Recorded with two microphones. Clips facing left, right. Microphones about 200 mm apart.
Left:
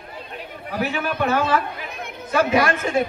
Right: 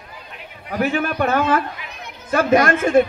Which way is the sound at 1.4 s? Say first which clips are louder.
Right 2 dB; 35° left (ahead or behind).